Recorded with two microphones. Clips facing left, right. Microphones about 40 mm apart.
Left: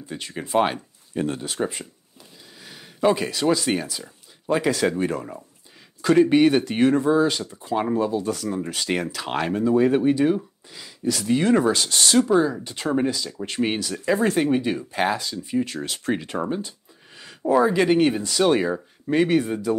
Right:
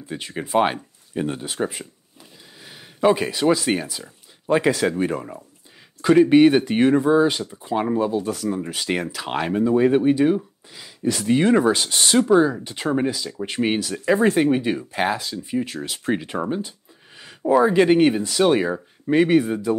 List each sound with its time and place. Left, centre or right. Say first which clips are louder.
0.1 s speech: right 2 dB; centre
11.1 s speech: right 2 dB; right